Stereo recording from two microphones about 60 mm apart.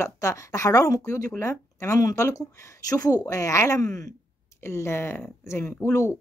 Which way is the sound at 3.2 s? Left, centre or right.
Left.